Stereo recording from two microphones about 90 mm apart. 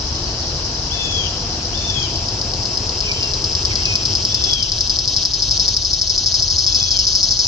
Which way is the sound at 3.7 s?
60° right (ahead or behind).